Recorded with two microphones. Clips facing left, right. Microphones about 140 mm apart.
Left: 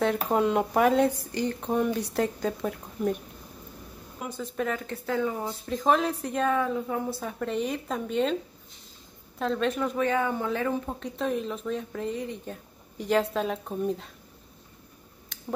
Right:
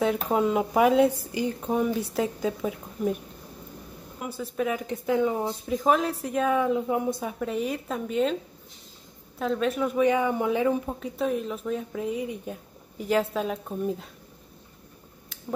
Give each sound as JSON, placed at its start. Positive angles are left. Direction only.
{"t": 0.0, "sound": "speech", "side_deg": -5}
{"t": 4.2, "sound": "speech", "side_deg": -5}
{"t": 5.7, "sound": "speech", "side_deg": -5}
{"t": 6.6, "sound": "speech", "side_deg": -15}
{"t": 7.3, "sound": "speech", "side_deg": -5}
{"t": 9.4, "sound": "speech", "side_deg": -5}